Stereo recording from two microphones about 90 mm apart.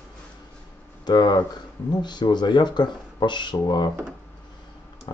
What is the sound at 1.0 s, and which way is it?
A man's voice, 50° left (ahead or behind).